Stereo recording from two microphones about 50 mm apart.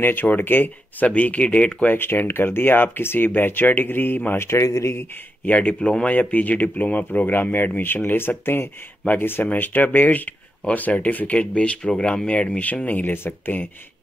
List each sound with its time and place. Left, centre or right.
0.0 s speech: left
1.0 s speech: left
2.0 s speech: left
4.4 s speech: left
5.4 s speech: left
5.8 s speech: centre
6.0 s a man's voice: left
9.5 s a man's voice: left
13.0 s speech: left